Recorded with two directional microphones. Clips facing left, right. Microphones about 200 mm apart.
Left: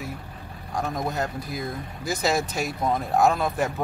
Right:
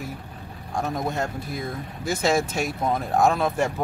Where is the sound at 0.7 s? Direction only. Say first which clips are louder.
Right 1 dB; centre (ahead or behind).